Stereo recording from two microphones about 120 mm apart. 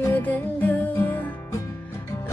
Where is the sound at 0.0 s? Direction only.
15° left (ahead or behind).